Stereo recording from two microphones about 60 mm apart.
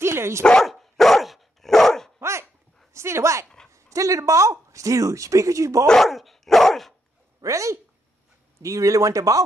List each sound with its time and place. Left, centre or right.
0.0 s dog: right
0.6 s dog: centre
2.1 s dog: right
2.9 s speech: right
3.7 s speech: right
5.9 s dog: centre
7.4 s speech: right